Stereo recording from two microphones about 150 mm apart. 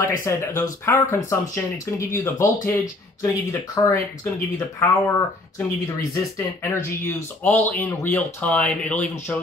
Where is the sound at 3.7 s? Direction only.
20° left (ahead or behind).